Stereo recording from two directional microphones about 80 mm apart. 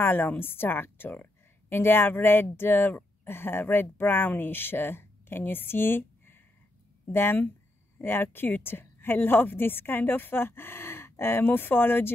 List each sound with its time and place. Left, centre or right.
0.0 s speech: left